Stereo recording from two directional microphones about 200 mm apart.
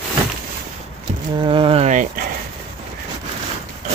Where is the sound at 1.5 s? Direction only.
25° right (ahead or behind).